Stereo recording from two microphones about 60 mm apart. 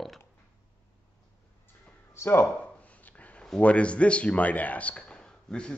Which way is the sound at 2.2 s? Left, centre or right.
Left.